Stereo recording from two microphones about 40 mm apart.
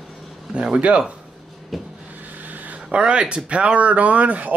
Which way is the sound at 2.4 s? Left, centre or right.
Right.